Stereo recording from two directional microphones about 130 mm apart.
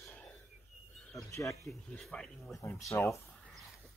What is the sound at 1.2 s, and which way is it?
Speech, 25° left (ahead or behind).